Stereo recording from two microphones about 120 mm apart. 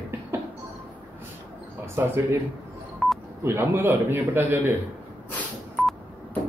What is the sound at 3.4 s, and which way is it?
A man's voice, 20° right (ahead or behind).